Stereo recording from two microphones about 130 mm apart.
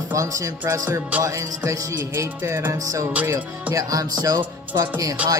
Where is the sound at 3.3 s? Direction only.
25° right (ahead or behind).